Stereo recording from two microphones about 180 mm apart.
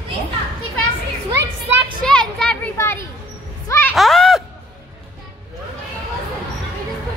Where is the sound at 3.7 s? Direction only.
10° left (ahead or behind).